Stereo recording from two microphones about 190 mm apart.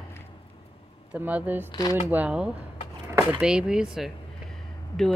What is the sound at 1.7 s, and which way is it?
Speech, 20° left (ahead or behind).